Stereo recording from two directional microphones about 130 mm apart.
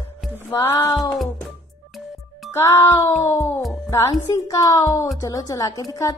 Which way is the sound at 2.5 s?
20° left (ahead or behind).